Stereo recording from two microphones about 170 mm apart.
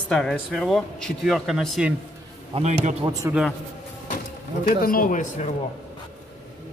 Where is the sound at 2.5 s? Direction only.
40° right (ahead or behind).